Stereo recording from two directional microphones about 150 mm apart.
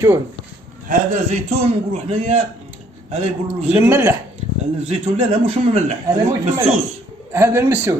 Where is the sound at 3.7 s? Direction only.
15° right (ahead or behind).